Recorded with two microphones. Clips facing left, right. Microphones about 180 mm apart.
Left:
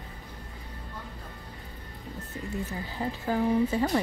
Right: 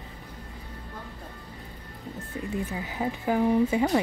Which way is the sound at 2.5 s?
15° right (ahead or behind).